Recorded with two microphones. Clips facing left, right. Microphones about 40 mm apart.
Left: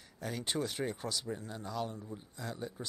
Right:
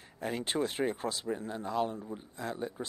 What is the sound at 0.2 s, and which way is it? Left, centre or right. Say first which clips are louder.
Speech: right 4 dB; right.